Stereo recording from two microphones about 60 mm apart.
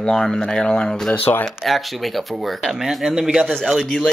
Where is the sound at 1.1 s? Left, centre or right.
Left.